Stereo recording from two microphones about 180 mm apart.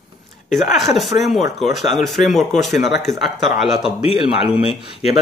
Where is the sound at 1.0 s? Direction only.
Centre (ahead or behind).